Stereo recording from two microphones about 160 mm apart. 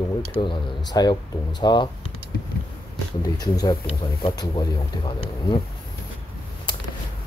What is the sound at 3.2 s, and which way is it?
Speech, 25° left (ahead or behind).